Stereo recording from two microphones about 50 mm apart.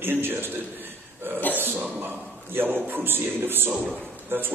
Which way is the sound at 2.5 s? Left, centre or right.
Right.